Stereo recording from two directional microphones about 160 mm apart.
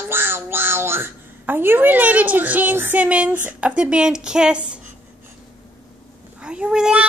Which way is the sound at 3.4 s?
5° right (ahead or behind).